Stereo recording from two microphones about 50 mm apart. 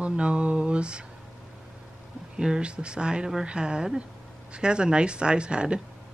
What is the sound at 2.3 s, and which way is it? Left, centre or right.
Speech, centre.